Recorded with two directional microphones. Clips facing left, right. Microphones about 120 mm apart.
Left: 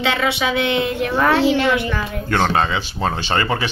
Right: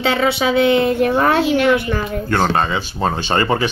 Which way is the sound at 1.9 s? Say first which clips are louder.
Right 3 dB; 40° right (ahead or behind).